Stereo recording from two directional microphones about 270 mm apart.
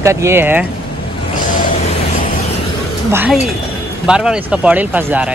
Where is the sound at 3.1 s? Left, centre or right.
Centre.